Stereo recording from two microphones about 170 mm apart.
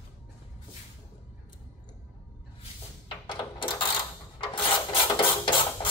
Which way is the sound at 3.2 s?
30° left (ahead or behind).